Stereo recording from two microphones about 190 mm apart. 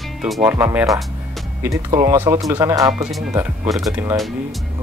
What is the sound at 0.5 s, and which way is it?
Speech, 15° right (ahead or behind).